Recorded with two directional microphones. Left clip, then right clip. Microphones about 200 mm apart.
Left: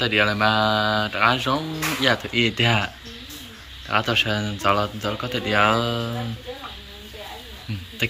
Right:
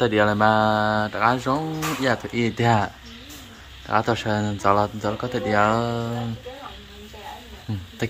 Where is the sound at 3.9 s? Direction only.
30° right (ahead or behind).